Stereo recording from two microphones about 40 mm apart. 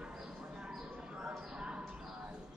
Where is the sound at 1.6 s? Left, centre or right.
Right.